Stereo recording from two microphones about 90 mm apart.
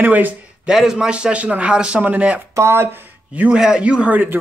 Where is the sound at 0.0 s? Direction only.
20° right (ahead or behind).